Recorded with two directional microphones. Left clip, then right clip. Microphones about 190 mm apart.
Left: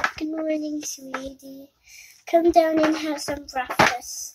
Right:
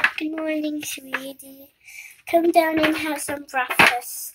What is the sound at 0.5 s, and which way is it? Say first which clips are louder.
Speech: right 1 dB; 10° left (ahead or behind).